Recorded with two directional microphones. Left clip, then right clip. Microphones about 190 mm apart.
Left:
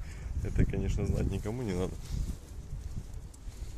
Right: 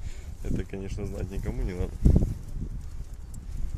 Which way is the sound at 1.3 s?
15° left (ahead or behind).